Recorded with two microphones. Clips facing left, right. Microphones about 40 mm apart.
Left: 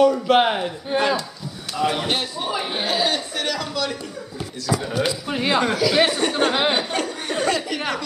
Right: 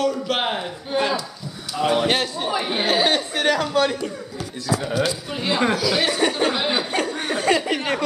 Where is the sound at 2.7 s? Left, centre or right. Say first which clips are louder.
Right 4 dB; right.